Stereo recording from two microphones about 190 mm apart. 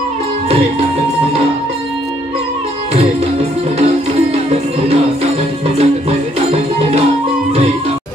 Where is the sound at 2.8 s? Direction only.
30° right (ahead or behind).